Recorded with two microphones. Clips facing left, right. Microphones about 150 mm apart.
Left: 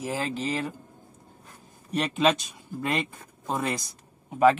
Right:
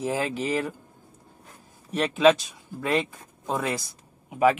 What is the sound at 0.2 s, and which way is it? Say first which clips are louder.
Speech: right 2 dB; 10° right (ahead or behind).